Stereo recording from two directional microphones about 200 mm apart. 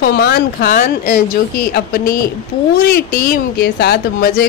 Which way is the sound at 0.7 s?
40° left (ahead or behind).